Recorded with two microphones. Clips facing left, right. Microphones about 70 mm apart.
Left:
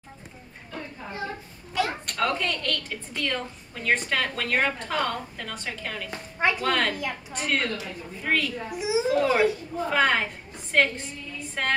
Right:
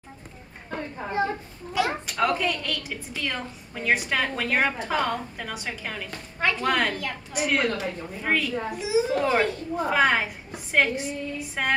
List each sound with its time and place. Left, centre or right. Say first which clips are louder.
0.7 s chatter: right 5 dB; right
2.0 s a woman's voice: right 2 dB; centre
6.0 s a woman's voice: left 2 dB; centre
6.6 s a woman's voice: right 1 dB; centre
6.9 s a child's voice: left 1 dB; centre
7.3 s a woman's voice: right 4 dB; centre
8.7 s a child's voice: right 1 dB; centre
9.0 s a woman's voice: left 5 dB; centre